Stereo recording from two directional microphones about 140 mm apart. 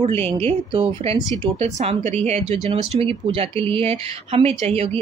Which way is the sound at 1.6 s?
50° right (ahead or behind).